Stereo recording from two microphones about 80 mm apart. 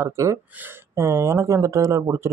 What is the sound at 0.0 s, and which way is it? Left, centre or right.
Speech, right.